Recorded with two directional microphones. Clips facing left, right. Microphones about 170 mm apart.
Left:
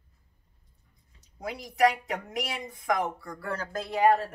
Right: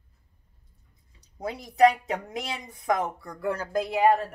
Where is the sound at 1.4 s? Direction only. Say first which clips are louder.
Right 4 dB; 25° right (ahead or behind).